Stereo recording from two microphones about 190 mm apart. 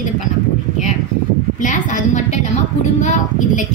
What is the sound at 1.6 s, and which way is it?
Speech, 40° left (ahead or behind).